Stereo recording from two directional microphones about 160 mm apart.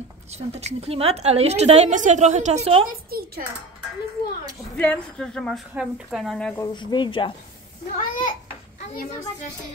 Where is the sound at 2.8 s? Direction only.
70° right (ahead or behind).